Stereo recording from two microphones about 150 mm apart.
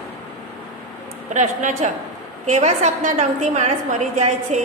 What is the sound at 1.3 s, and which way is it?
A woman's voice, 55° right (ahead or behind).